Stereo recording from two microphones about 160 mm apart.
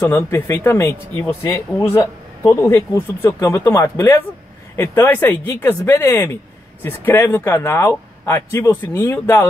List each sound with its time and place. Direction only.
0.0 s speech: 15° left (ahead or behind)